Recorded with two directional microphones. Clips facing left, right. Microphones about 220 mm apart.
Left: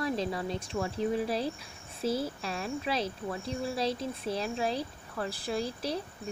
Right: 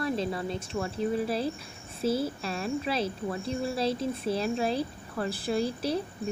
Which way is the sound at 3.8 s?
5° right (ahead or behind).